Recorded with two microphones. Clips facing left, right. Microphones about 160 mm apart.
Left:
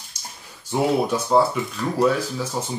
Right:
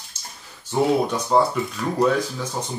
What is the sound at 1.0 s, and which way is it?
Speech, 5° left (ahead or behind).